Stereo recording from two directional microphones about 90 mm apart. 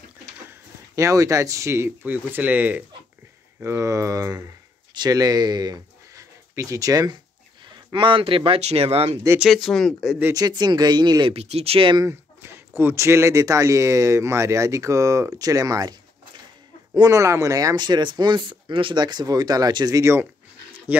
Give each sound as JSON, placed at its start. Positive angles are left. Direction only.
{"t": 0.9, "sound": "speech", "side_deg": -40}
{"t": 3.6, "sound": "speech", "side_deg": -35}
{"t": 4.9, "sound": "speech", "side_deg": -45}
{"t": 6.5, "sound": "speech", "side_deg": -35}
{"t": 7.9, "sound": "speech", "side_deg": -75}
{"t": 9.4, "sound": "speech", "side_deg": 0}
{"t": 10.3, "sound": "speech", "side_deg": -50}
{"t": 11.2, "sound": "speech", "side_deg": -85}
{"t": 12.0, "sound": "speech", "side_deg": -30}
{"t": 17.1, "sound": "speech", "side_deg": -35}
{"t": 17.7, "sound": "speech", "side_deg": -55}
{"t": 18.9, "sound": "speech", "side_deg": -50}
{"t": 20.0, "sound": "speech", "side_deg": -30}
{"t": 20.9, "sound": "speech", "side_deg": -90}